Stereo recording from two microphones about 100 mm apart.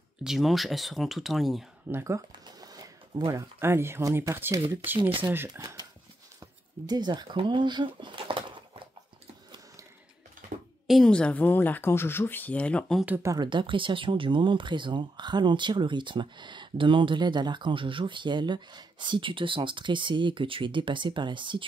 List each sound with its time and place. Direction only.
0.2 s speech: 5° right (ahead or behind)
1.9 s speech: 25° right (ahead or behind)
2.4 s a sound: 40° right (ahead or behind)
3.3 s speech: 30° right (ahead or behind)
6.9 s speech: 45° right (ahead or behind)
10.9 s speech: 5° left (ahead or behind)
13.4 s speech: 55° right (ahead or behind)